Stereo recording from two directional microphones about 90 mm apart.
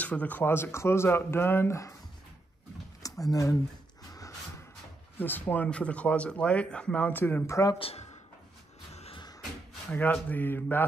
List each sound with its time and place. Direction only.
0.0 s speech: 20° left (ahead or behind); by 2.0 s 35° left (ahead or behind)
3.0 s speech: 40° left (ahead or behind)
5.2 s speech: 20° left (ahead or behind)
7.4 s speech: 35° left (ahead or behind)
9.9 s speech: 15° left (ahead or behind)